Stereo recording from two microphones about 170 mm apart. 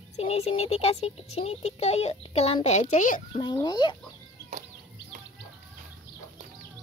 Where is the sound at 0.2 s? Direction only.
35° left (ahead or behind).